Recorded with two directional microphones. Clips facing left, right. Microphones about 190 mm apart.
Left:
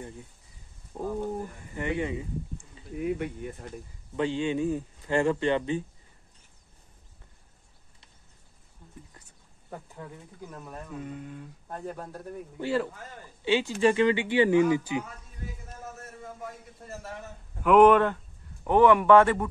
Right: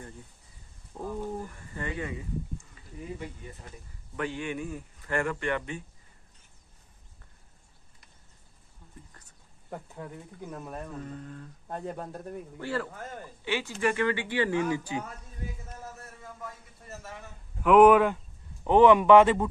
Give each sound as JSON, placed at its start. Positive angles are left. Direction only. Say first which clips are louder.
{"t": 0.9, "sound": "speech", "louder": "left 3 dB", "side_deg": 15}
{"t": 3.0, "sound": "speech", "louder": "left 9 dB", "side_deg": 65}
{"t": 4.2, "sound": "speech", "louder": "left 6 dB", "side_deg": 25}
{"t": 10.5, "sound": "speech", "louder": "right 4 dB", "side_deg": -15}
{"t": 10.9, "sound": "mantra", "louder": "left 2 dB", "side_deg": 10}
{"t": 11.7, "sound": "speech", "louder": "right 1 dB", "side_deg": -20}
{"t": 12.5, "sound": "speech", "louder": "left 6 dB", "side_deg": 20}
{"t": 17.6, "sound": "speech", "louder": "even", "side_deg": -5}